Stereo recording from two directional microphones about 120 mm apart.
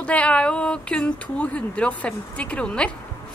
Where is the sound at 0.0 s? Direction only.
10° left (ahead or behind).